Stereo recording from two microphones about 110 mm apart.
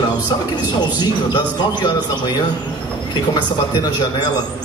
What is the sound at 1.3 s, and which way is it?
A man's voice, 40° left (ahead or behind).